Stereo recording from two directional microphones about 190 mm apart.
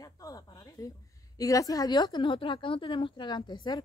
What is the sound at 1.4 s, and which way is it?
A woman's voice, 20° left (ahead or behind).